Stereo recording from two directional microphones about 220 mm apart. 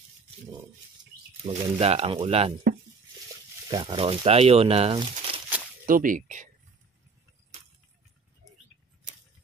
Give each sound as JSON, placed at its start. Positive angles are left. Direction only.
{"t": 1.4, "sound": "speech", "side_deg": -25}
{"t": 3.6, "sound": "speech", "side_deg": -20}
{"t": 5.9, "sound": "speech", "side_deg": -40}